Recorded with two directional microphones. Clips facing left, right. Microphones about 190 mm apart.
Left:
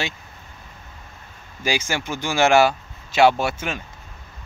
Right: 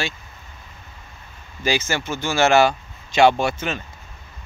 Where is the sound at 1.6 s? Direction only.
10° left (ahead or behind).